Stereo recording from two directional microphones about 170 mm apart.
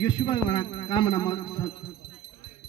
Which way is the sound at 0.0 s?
30° left (ahead or behind).